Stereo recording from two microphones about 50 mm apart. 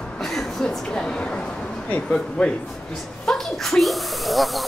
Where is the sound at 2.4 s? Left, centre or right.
Centre.